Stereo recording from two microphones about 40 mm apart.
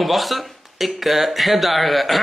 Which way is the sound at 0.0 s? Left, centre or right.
Centre.